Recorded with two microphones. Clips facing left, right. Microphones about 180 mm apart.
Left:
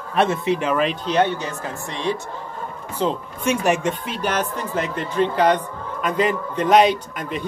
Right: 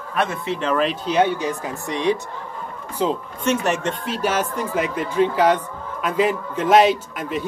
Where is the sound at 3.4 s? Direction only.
10° left (ahead or behind).